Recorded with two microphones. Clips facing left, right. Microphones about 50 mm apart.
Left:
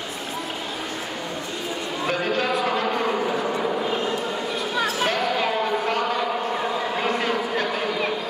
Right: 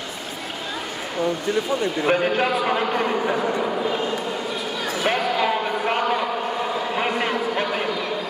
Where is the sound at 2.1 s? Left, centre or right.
Right.